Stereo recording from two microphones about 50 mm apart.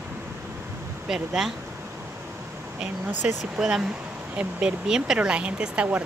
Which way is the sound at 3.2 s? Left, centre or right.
Centre.